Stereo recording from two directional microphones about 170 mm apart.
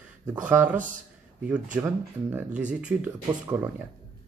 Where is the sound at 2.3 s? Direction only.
5° right (ahead or behind).